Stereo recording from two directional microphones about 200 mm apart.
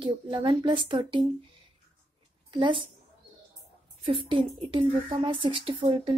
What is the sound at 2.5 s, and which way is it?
Speech, 25° right (ahead or behind).